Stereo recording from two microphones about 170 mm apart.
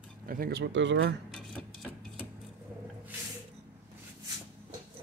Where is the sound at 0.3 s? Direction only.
65° right (ahead or behind); by 1.0 s 90° right.